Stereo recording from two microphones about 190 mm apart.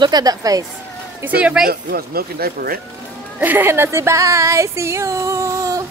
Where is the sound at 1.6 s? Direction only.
50° right (ahead or behind).